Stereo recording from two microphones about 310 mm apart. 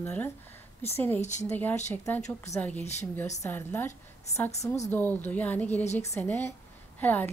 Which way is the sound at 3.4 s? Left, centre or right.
Centre.